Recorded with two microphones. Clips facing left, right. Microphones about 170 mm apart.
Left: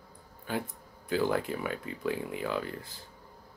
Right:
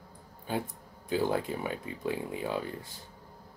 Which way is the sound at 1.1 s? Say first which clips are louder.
Even; 20° right (ahead or behind).